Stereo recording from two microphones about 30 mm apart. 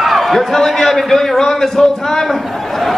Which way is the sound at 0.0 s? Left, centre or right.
Centre.